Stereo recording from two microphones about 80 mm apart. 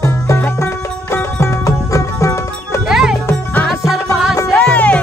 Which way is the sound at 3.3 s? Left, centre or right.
Centre.